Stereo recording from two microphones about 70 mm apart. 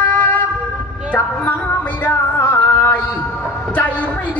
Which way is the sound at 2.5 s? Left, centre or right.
Left.